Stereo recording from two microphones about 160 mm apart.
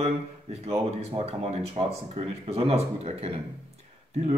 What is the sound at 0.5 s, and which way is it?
Speech, 40° right (ahead or behind).